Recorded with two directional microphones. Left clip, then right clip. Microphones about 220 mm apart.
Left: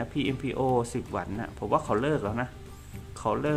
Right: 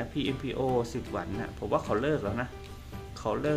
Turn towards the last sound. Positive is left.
turn(degrees=15)  # may be behind; listen again after turning